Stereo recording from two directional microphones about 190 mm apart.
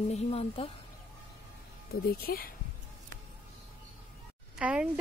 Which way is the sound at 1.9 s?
55° left (ahead or behind).